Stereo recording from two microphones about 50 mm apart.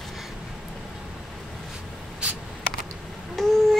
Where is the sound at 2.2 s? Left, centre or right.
Right.